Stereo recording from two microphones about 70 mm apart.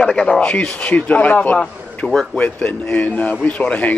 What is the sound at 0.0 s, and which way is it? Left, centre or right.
A man's voice, centre.